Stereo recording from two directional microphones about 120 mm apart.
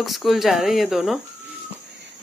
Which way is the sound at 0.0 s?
Centre (ahead or behind).